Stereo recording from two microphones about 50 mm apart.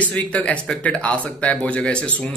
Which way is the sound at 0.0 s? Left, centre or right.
Left.